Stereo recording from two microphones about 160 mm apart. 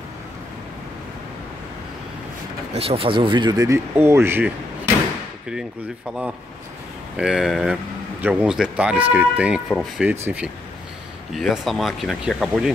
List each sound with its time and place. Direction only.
2.7 s speech: 40° right (ahead or behind); by 4.5 s 15° right (ahead or behind)
7.2 s speech: 5° right (ahead or behind)
11.3 s speech: centre (ahead or behind)